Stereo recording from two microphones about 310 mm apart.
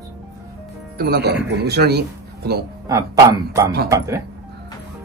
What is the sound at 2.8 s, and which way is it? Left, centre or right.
Speech, centre.